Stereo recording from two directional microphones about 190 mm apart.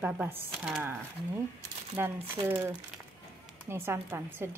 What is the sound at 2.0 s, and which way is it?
A woman's voice, 15° right (ahead or behind).